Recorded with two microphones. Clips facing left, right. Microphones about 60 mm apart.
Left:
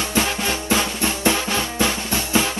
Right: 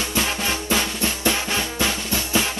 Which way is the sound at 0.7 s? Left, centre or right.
Left.